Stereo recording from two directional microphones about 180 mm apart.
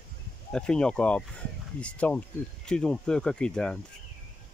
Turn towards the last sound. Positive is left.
turn(degrees=5)  # may be behind; listen again after turning